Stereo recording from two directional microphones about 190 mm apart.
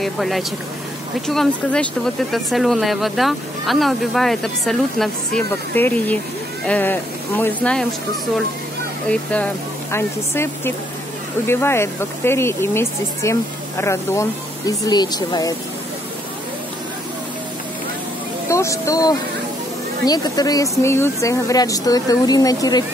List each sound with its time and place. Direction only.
0.0 s speech: centre (ahead or behind)
9.1 s speech: 5° left (ahead or behind)
18.5 s speech: 15° left (ahead or behind)